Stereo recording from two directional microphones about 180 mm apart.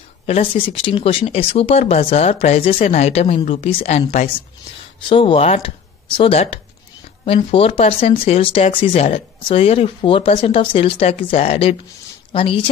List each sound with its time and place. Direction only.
0.3 s speech: 30° left (ahead or behind)
5.0 s speech: 30° left (ahead or behind)